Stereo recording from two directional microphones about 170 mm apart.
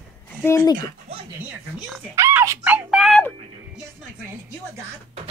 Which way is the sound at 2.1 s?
15° right (ahead or behind).